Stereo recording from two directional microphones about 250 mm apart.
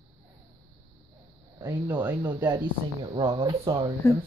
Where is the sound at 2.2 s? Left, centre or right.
Centre.